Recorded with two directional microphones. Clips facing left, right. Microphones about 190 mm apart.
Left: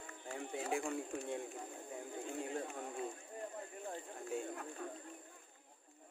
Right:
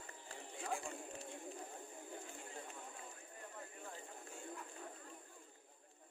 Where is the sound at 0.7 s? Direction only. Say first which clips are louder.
Left 8 dB; 70° left (ahead or behind).